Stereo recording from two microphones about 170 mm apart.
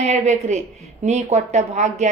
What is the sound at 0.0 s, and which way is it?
A woman's voice, 40° right (ahead or behind).